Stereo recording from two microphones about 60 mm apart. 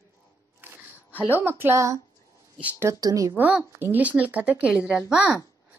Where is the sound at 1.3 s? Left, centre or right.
Right.